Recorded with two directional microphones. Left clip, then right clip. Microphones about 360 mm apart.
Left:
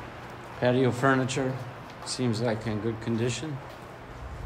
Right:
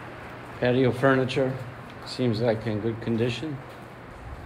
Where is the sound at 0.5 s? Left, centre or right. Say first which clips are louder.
Right 2 dB; centre.